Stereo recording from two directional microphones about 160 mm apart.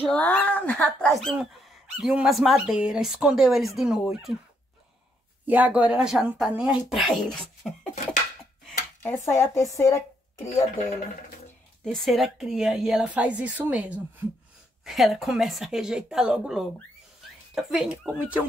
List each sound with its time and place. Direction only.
0.0 s speech: 10° left (ahead or behind)
5.5 s speech: 10° right (ahead or behind)
9.0 s speech: 15° left (ahead or behind)
11.8 s speech: centre (ahead or behind)